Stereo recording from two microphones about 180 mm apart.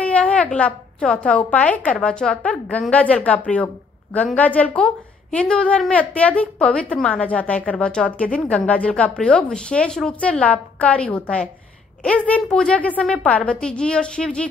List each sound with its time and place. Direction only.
0.0 s a woman's voice: 5° left (ahead or behind)